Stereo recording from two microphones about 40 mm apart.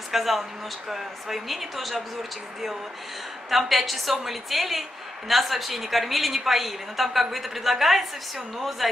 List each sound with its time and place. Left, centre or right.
0.1 s a woman's voice: centre
3.4 s a woman's voice: centre